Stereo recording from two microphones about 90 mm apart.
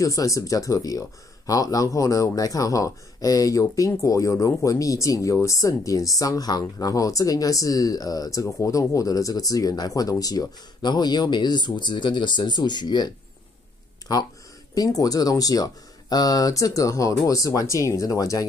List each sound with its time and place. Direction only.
0.0 s speech: 40° left (ahead or behind); by 13.1 s 55° left (ahead or behind)
14.7 s speech: 40° left (ahead or behind)